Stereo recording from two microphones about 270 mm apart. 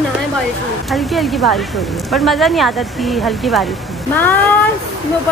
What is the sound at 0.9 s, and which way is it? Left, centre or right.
Speech, centre.